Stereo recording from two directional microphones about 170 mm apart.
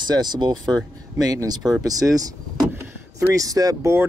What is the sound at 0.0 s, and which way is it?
Speech, 25° right (ahead or behind).